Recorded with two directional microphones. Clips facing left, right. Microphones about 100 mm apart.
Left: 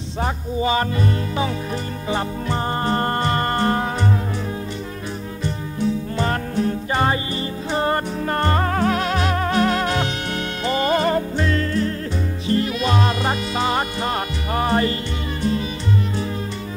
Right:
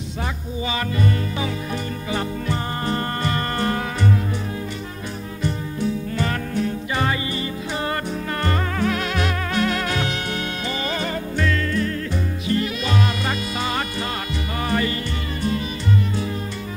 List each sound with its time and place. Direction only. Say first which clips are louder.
0.2 s music: left 6 dB; 35° left (ahead or behind)
2.0 s music: left 2 dB; 30° left (ahead or behind)
6.1 s music: left 2 dB; 35° left (ahead or behind)